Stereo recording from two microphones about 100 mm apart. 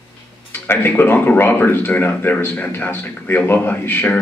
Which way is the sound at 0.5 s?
20° left (ahead or behind).